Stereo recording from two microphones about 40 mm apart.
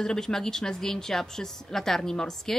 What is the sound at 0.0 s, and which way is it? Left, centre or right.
A woman's voice, centre.